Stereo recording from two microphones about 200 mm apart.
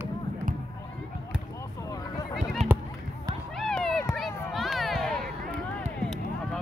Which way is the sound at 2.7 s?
10° right (ahead or behind).